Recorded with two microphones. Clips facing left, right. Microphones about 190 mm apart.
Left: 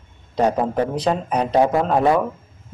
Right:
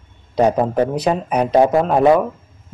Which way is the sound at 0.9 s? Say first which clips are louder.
Right 2 dB; 10° right (ahead or behind).